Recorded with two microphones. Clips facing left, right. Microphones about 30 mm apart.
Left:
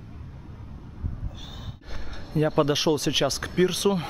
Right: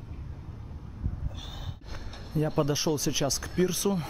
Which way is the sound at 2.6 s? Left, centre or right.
Left.